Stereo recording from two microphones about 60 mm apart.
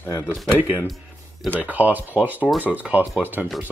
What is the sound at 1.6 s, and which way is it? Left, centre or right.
Speech, right.